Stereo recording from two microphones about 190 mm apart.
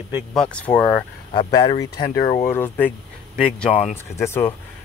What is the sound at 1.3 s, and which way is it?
Speech, 30° left (ahead or behind).